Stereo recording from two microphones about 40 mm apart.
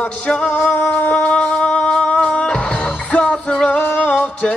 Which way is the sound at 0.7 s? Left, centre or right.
Left.